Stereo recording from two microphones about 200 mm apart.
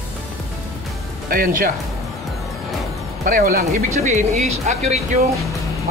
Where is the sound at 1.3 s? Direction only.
45° right (ahead or behind).